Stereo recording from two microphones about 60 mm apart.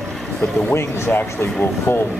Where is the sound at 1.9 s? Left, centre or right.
Left.